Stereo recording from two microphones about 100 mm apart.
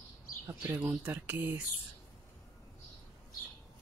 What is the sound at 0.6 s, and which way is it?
Speech, 15° right (ahead or behind).